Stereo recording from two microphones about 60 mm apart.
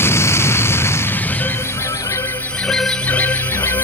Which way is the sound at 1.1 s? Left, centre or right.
Left.